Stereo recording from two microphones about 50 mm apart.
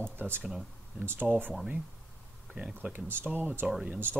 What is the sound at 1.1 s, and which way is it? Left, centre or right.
Speech, right.